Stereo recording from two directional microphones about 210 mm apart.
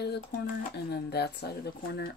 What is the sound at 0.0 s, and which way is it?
Speech, 50° left (ahead or behind).